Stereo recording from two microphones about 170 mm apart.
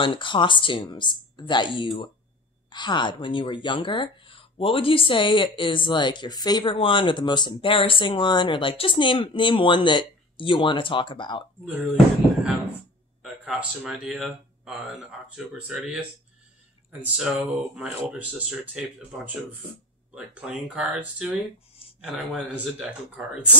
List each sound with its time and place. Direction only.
0.0 s speech: 30° left (ahead or behind)
13.2 s speech: 5° right (ahead or behind)
17.0 s speech: 10° right (ahead or behind)